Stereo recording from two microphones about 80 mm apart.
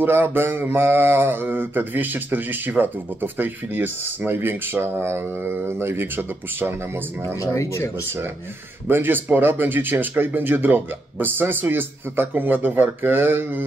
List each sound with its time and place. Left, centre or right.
0.0 s mantra: right
7.3 s speech: left
8.8 s mantra: right